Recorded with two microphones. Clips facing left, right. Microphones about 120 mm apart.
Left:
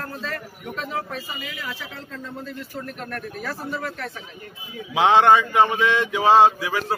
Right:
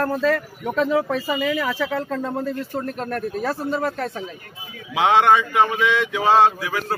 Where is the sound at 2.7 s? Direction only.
35° right (ahead or behind).